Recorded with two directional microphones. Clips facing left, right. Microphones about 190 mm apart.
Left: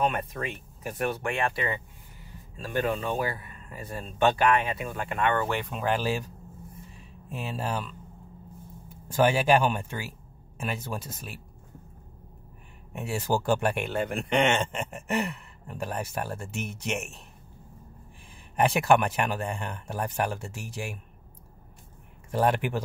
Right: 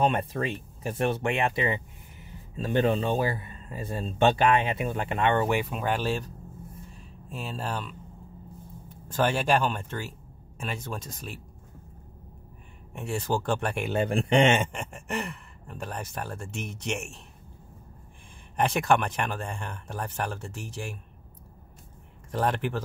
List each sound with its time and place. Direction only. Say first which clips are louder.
0.0 s speech: right 3 dB; 30° right (ahead or behind)
5.5 s speech: right 1 dB; 5° right (ahead or behind)
12.9 s speech: left 1 dB; 5° left (ahead or behind)
13.9 s speech: right 7 dB; 30° right (ahead or behind)
14.7 s speech: left 3 dB; 5° left (ahead or behind)
18.6 s speech: left 2 dB; 5° left (ahead or behind)
22.3 s speech: left 2 dB; 10° left (ahead or behind)